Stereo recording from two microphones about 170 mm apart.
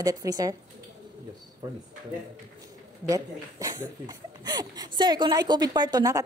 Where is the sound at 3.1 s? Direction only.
20° right (ahead or behind).